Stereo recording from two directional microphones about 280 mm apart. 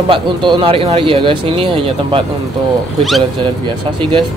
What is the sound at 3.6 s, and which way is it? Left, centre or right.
Speech, centre.